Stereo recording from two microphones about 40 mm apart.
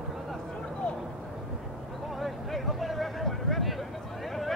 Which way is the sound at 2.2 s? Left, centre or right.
Centre.